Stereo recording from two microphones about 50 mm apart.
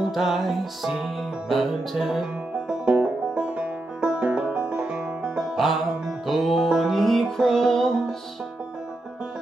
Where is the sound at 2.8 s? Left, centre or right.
Right.